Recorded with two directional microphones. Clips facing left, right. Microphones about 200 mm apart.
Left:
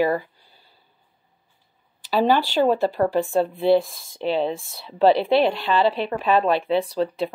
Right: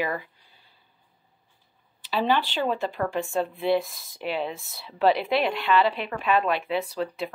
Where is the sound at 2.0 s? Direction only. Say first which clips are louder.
Left 5 dB; 40° left (ahead or behind).